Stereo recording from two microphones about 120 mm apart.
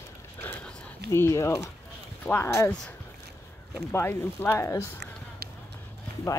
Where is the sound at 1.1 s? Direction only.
25° left (ahead or behind).